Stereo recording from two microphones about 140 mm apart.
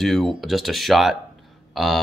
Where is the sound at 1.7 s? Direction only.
Centre (ahead or behind).